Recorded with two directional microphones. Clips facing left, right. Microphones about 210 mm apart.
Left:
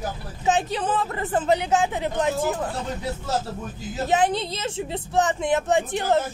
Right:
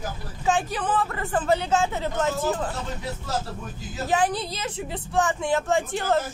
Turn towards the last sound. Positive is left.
turn(degrees=20)  # may be behind; listen again after turning